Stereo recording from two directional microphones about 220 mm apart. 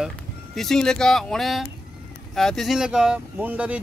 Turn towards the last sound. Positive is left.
turn(degrees=-5)  # may be behind; listen again after turning